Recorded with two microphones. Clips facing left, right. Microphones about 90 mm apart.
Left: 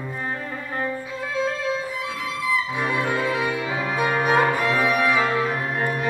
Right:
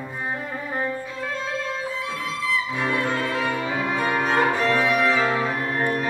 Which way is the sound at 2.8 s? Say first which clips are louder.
Left 1 dB; 15° left (ahead or behind).